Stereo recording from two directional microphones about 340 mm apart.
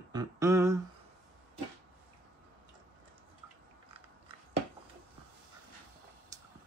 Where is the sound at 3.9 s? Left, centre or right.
Centre.